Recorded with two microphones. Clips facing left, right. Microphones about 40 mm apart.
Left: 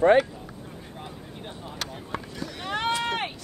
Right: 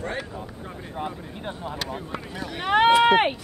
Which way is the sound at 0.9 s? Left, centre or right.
Right.